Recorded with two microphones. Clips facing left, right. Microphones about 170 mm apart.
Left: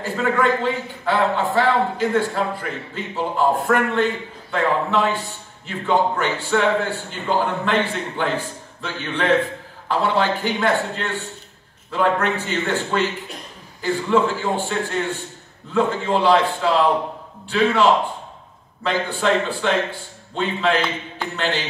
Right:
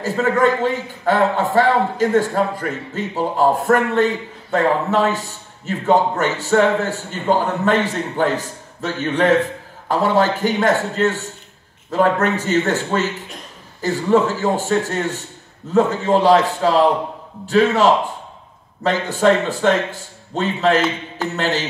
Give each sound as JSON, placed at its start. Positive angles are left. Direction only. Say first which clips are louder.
{"t": 0.0, "sound": "a man's voice", "louder": "right 3 dB", "side_deg": -40}
{"t": 18.8, "sound": "a man's voice", "louder": "right 4 dB", "side_deg": -45}